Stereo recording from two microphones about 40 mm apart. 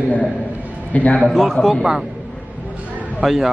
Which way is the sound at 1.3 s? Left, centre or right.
Centre.